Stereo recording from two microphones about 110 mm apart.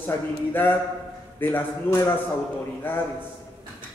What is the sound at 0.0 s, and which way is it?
A man's voice, 15° left (ahead or behind).